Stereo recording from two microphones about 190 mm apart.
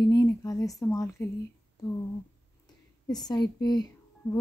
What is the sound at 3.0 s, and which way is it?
Speech, 20° left (ahead or behind).